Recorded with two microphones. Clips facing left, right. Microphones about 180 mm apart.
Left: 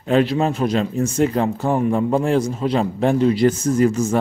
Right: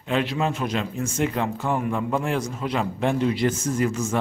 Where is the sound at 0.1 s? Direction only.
40° left (ahead or behind).